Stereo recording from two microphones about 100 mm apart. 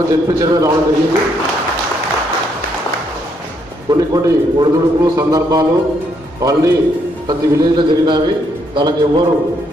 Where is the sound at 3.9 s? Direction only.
45° right (ahead or behind).